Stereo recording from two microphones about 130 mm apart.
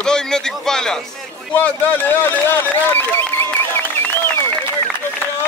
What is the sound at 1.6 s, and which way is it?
Speech, 15° left (ahead or behind).